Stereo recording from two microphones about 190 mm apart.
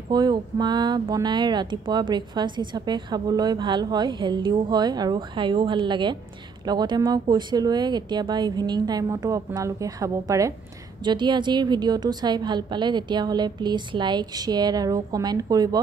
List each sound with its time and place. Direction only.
0.1 s speech: 20° right (ahead or behind)